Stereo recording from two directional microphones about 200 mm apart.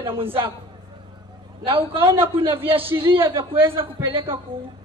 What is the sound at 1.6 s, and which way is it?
A woman's voice, 25° right (ahead or behind).